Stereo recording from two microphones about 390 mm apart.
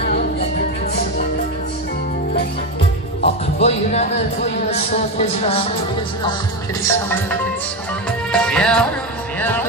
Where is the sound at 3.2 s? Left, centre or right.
Centre.